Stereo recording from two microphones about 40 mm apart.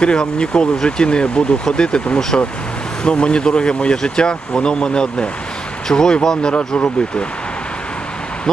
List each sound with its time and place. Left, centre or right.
0.0 s speech: left